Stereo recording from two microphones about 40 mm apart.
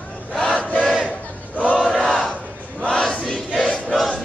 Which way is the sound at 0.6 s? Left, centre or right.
Left.